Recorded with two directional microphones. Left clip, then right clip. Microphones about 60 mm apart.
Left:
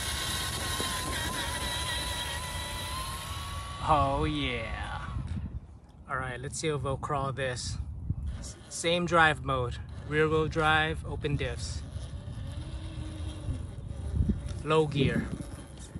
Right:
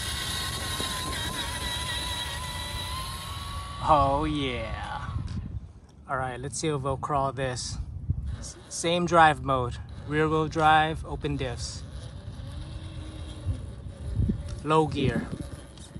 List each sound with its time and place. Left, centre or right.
0.0 s music: centre
6.0 s speech: right
8.7 s speech: right
14.6 s speech: right
15.1 s speech: centre